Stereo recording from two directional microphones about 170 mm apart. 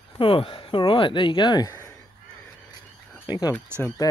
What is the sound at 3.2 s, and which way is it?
Speech, 25° left (ahead or behind).